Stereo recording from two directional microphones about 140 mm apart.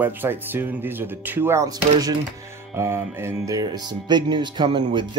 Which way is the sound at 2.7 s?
20° right (ahead or behind).